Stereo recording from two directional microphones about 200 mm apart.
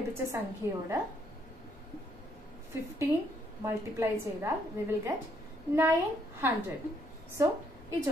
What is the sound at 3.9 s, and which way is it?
A woman's voice, 15° right (ahead or behind).